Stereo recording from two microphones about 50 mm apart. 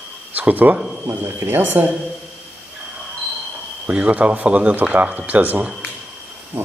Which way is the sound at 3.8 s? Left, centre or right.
Right.